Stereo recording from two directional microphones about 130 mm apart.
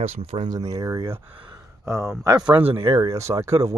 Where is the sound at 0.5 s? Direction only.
30° right (ahead or behind).